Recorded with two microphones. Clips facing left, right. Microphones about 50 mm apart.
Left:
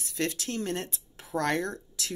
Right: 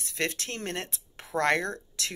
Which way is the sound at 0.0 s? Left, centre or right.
Right.